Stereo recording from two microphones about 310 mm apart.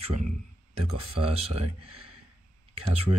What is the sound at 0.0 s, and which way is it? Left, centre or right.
Speech, right.